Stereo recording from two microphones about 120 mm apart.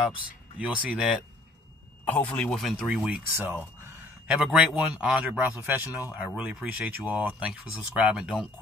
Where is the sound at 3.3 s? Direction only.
15° right (ahead or behind).